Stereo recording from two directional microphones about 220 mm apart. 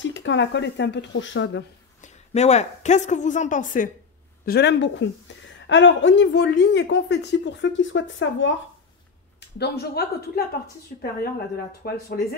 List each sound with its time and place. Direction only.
0.0 s speech: 55° left (ahead or behind)
2.0 s a woman's voice: 30° left (ahead or behind)
4.5 s speech: 50° left (ahead or behind)
9.6 s speech: 45° left (ahead or behind)